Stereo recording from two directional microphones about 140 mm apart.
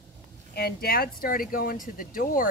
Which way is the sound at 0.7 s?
90° left.